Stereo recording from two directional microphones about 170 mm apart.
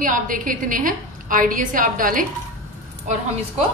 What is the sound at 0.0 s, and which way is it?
A woman's voice, 50° right (ahead or behind).